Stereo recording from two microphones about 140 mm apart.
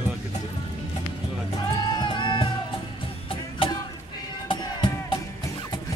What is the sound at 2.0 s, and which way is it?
Music, 35° left (ahead or behind).